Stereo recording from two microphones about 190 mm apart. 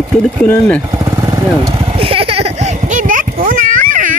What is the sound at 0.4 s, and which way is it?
Speech, 5° left (ahead or behind).